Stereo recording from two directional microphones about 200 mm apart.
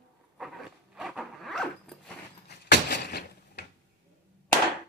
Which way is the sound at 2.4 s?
55° left (ahead or behind).